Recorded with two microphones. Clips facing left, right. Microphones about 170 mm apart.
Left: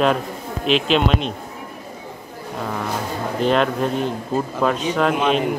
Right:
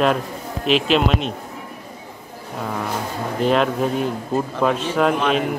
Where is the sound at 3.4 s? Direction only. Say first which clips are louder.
Even; centre (ahead or behind).